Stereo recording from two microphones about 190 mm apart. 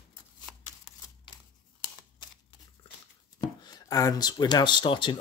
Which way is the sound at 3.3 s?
20° left (ahead or behind).